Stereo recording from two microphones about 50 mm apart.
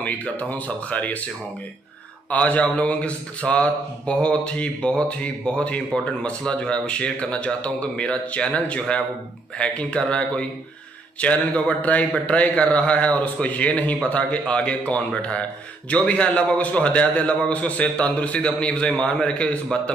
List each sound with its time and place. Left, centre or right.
0.0 s speech: left
2.3 s a man's voice: left
14.4 s a man's voice: centre